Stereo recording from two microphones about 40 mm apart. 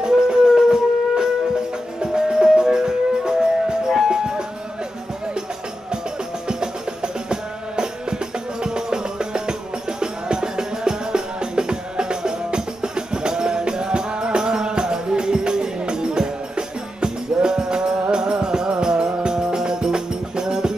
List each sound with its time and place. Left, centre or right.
0.0 s wind instrument: centre
2.0 s music: centre
6.4 s music: centre